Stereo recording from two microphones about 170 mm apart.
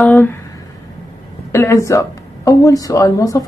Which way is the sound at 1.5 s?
15° left (ahead or behind).